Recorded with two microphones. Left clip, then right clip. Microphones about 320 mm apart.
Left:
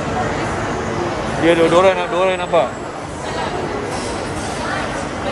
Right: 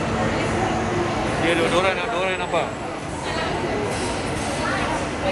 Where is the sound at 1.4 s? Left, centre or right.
Centre.